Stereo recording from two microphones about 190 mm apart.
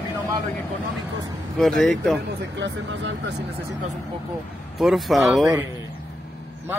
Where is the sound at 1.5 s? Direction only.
Centre (ahead or behind).